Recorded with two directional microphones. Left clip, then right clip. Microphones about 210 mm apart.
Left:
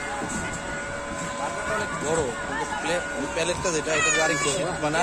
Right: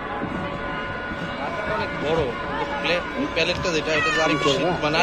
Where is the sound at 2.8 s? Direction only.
40° left (ahead or behind).